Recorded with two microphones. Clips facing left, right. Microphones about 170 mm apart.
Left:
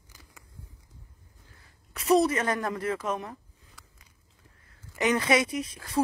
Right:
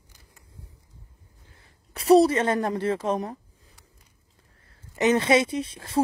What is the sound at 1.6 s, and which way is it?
A woman's voice, 30° right (ahead or behind).